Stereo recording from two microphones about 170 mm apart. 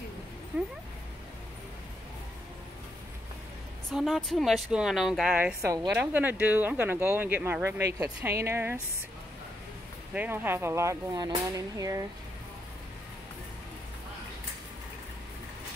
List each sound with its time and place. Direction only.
0.5 s speech: 5° right (ahead or behind)
3.9 s speech: centre (ahead or behind)
10.1 s speech: 10° right (ahead or behind)